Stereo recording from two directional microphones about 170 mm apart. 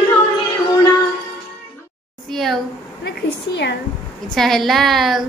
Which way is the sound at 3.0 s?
85° left.